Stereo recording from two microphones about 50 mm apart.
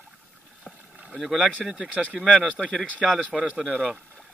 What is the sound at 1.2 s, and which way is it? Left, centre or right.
Speech, centre.